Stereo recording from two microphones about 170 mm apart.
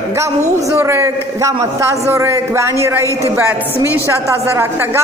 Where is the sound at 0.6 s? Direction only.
15° right (ahead or behind).